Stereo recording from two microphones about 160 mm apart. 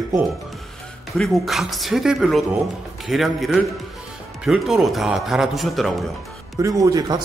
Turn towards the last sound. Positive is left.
turn(degrees=-25)  # may be behind; listen again after turning